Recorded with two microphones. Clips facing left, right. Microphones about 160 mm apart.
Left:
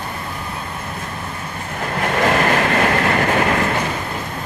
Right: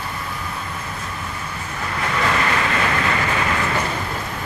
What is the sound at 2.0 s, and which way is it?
Train, 55° left (ahead or behind).